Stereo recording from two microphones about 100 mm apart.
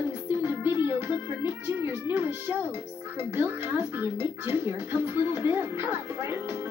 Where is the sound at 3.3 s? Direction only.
25° right (ahead or behind).